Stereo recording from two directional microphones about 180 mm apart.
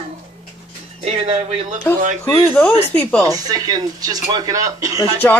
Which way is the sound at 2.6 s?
5° left (ahead or behind).